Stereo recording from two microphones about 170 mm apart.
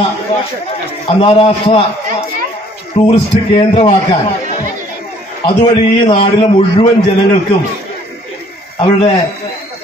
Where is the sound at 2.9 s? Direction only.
35° left (ahead or behind).